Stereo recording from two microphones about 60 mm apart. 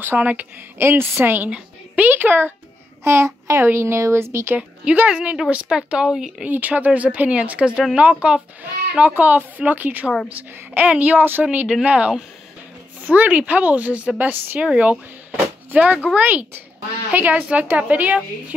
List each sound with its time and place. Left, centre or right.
0.0 s a woman's voice: right
0.7 s a child's voice: right
3.0 s a child's voice: right
4.6 s speech: right
6.1 s speech: centre
6.4 s a woman's voice: right
11.1 s speech: right
11.4 s a woman's voice: centre